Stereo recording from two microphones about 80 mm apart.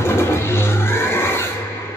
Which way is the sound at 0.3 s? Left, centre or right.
Left.